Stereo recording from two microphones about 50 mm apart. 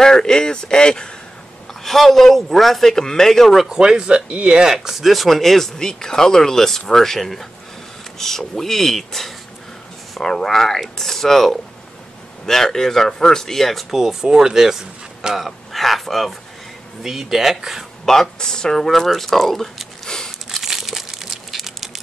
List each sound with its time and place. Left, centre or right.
0.0 s speech: centre
1.7 s speech: centre
3.6 s speech: centre
4.6 s speech: centre
15.4 s speech: centre
18.0 s speech: centre
20.4 s crumpling: centre